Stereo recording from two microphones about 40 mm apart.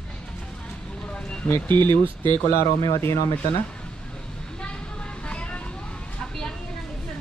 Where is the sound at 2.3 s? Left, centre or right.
Left.